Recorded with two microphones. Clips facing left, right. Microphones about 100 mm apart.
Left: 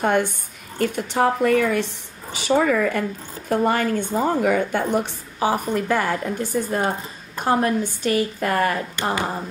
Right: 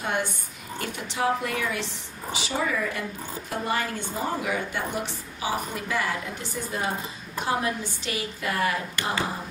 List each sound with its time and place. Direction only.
0.0 s a woman's voice: 50° left (ahead or behind)